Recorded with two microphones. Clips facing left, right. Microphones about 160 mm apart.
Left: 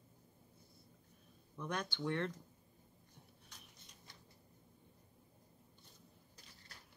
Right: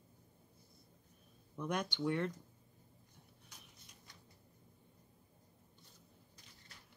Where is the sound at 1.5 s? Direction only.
15° right (ahead or behind).